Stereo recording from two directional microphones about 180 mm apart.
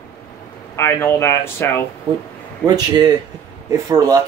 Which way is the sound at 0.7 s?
15° left (ahead or behind).